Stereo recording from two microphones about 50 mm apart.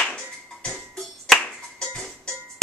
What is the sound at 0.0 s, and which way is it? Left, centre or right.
Music, centre.